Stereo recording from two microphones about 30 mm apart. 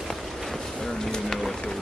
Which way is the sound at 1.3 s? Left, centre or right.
Centre.